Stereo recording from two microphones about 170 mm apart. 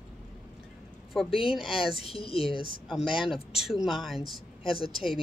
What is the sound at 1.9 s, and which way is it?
Speech, 35° left (ahead or behind).